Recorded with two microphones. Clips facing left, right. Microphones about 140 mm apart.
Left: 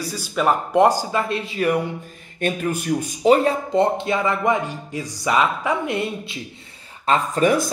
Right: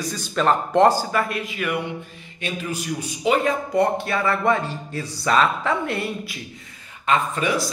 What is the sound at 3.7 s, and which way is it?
Speech, 20° left (ahead or behind).